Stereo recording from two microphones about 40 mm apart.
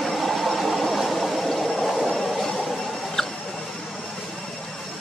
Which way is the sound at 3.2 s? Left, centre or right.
Centre.